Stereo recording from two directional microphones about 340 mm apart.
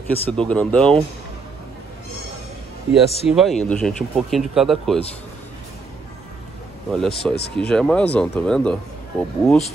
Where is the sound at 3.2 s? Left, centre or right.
Centre.